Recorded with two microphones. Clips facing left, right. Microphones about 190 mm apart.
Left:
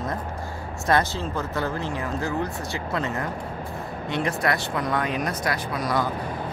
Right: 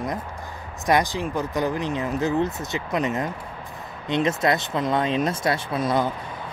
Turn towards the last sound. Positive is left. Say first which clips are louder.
# right 3 dB
turn(degrees=-25)  # may be behind; listen again after turning